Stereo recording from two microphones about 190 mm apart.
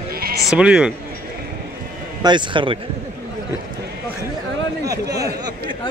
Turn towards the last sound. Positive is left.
turn(degrees=-20)  # may be behind; listen again after turning